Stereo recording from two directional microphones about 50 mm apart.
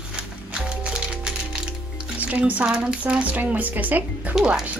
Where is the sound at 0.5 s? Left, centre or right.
Centre.